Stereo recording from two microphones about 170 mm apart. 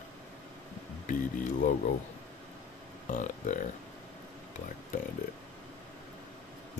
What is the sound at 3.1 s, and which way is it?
Speech, 50° left (ahead or behind).